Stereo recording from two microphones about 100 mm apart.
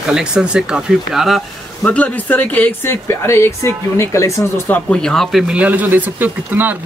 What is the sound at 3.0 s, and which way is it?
Speech, 30° left (ahead or behind).